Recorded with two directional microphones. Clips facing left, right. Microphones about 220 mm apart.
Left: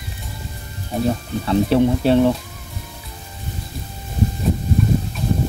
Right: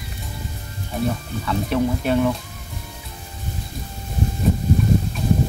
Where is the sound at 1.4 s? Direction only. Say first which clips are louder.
Left 6 dB; 30° left (ahead or behind).